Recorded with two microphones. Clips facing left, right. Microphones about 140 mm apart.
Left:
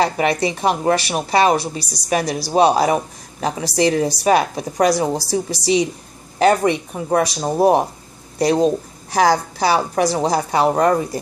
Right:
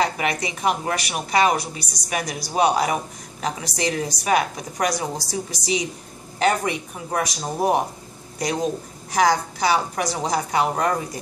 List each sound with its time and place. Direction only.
0.0 s a woman's voice: 30° left (ahead or behind)